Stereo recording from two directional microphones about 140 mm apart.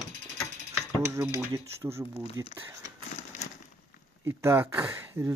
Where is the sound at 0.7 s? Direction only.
20° right (ahead or behind).